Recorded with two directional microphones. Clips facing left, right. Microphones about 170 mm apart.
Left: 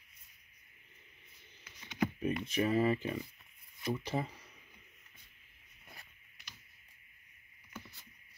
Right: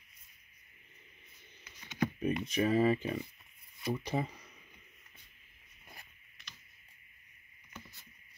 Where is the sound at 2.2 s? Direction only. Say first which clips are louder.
Right 3 dB; 15° right (ahead or behind).